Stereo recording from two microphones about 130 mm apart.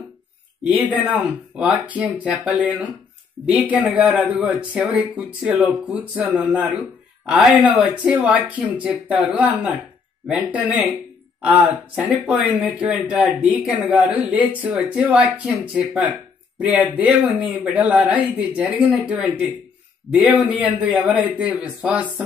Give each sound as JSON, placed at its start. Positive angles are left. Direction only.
{"t": 0.7, "sound": "speech", "side_deg": -10}